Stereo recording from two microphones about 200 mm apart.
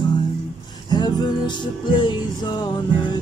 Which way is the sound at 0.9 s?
20° left (ahead or behind).